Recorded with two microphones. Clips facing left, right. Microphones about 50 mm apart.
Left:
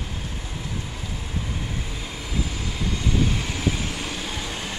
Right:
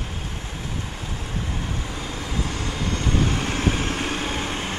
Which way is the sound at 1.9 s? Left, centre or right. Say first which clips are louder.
Right 2 dB; right.